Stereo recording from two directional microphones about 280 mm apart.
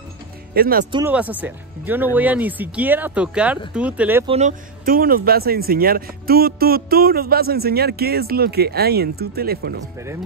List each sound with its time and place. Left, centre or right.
0.6 s speech: right
0.9 s speech: centre
4.3 s speech: right